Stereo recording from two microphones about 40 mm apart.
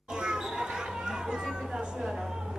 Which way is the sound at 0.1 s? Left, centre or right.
Centre.